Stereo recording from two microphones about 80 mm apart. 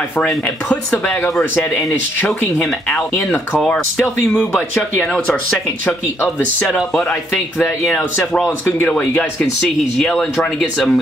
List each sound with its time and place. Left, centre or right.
0.7 s speech: centre
2.2 s speech: centre
7.8 s speech: centre
9.1 s speech: centre